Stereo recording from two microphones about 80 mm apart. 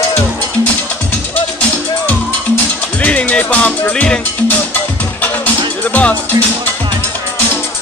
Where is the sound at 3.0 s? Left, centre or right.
Centre.